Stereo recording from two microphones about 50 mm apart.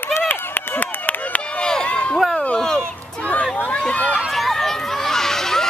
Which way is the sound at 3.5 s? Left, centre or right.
Left.